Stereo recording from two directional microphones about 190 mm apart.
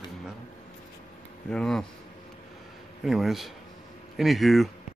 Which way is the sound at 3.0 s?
Centre (ahead or behind).